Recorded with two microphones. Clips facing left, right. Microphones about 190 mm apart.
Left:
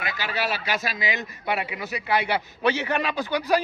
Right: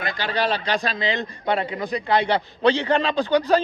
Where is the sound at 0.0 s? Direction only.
5° left (ahead or behind).